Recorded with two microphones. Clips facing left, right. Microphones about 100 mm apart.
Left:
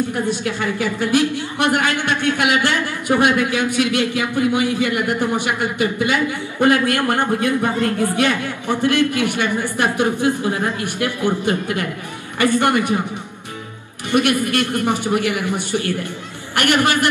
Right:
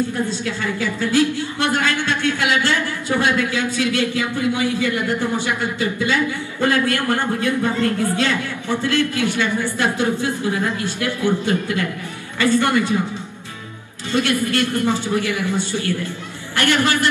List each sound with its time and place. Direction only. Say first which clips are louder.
0.0 s a woman's voice: left 1 dB; 15° left (ahead or behind)
14.1 s a woman's voice: left 2 dB; 15° left (ahead or behind)